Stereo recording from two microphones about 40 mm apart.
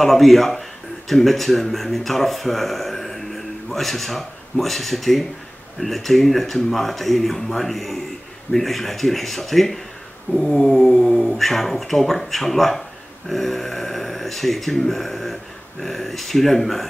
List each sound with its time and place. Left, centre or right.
0.0 s a man's voice: centre